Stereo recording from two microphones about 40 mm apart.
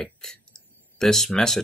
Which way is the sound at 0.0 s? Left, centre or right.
Centre.